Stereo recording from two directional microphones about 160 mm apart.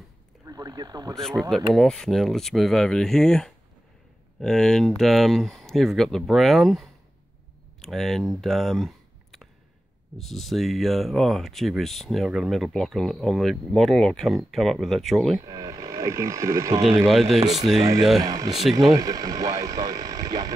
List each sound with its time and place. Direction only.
0.5 s a sound: 25° right (ahead or behind)
1.1 s speech: 5° left (ahead or behind)
15.4 s speech: 25° right (ahead or behind)
17.0 s speech: centre (ahead or behind)
17.4 s speech: 40° right (ahead or behind)
18.2 s speech: 20° right (ahead or behind)
18.6 s speech: centre (ahead or behind)
18.9 s speech: 20° right (ahead or behind)